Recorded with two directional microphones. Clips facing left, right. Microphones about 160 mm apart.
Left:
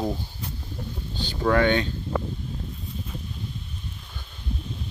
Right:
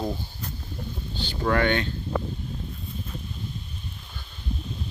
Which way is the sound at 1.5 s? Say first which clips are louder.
Left 2 dB; 10° left (ahead or behind).